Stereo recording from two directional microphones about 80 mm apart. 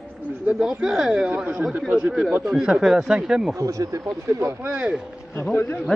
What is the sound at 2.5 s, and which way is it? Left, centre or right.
Speech, centre.